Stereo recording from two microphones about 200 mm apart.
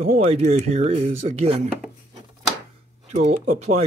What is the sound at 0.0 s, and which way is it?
Speech, 35° right (ahead or behind).